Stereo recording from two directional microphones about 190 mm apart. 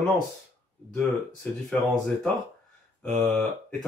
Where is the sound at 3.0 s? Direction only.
5° left (ahead or behind).